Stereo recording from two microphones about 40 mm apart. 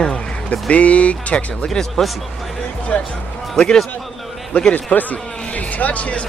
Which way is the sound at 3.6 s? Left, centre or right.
Centre.